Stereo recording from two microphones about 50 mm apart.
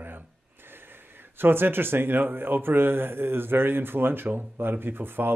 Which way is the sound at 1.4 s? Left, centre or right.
Right.